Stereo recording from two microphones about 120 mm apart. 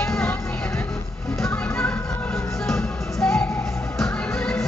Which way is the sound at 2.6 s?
5° left (ahead or behind).